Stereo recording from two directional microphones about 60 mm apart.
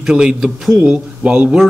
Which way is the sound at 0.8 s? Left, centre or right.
Right.